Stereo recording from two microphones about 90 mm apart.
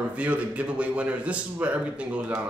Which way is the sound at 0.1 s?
15° right (ahead or behind).